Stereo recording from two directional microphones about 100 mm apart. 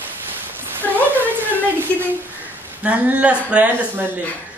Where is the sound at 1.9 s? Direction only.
15° left (ahead or behind).